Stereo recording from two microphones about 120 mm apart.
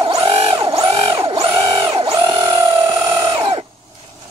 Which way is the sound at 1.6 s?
35° right (ahead or behind).